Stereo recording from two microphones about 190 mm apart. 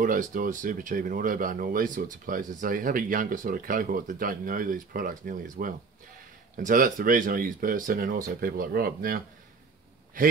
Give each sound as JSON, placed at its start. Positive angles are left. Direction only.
{"t": 0.0, "sound": "speech", "side_deg": -45}